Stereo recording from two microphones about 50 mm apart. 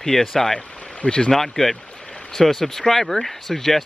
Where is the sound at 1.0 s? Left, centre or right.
Left.